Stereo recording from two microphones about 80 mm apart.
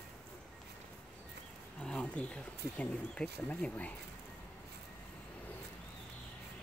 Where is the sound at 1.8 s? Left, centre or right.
Centre.